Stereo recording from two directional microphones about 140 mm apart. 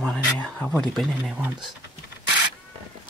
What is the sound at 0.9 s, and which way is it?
Speech, centre (ahead or behind).